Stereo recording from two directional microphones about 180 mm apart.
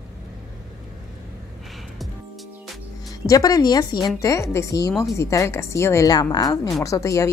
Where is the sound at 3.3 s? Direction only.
20° left (ahead or behind).